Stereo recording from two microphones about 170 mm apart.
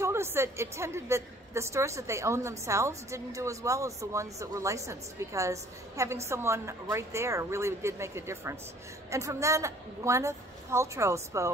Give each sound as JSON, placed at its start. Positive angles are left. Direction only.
{"t": 0.0, "sound": "a woman's voice", "side_deg": -15}